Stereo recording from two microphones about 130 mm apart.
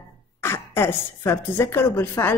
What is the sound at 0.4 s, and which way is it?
A woman's voice, 20° left (ahead or behind).